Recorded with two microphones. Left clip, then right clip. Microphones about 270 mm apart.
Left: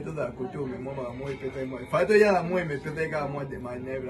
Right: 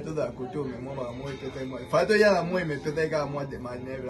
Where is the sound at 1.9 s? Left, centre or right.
Centre.